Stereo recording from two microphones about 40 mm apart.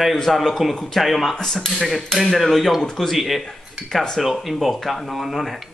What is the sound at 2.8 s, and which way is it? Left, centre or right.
Speech, centre.